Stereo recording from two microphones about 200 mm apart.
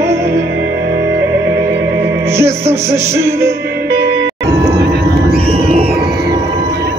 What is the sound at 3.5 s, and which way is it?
Music, 60° right (ahead or behind).